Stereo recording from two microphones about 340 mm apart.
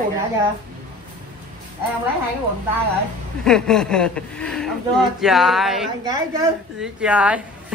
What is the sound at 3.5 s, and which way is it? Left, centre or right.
Speech, centre.